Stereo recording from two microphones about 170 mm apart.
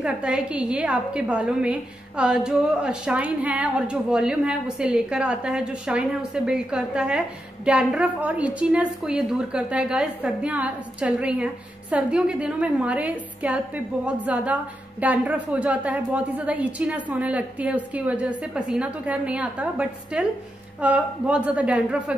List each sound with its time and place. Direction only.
0.0 s a woman's voice: 5° right (ahead or behind)